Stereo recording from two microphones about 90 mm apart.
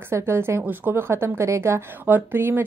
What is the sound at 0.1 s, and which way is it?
A woman's voice, 25° right (ahead or behind).